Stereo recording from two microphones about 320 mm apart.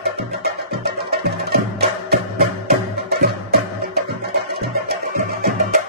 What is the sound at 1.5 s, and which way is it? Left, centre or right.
Music, right.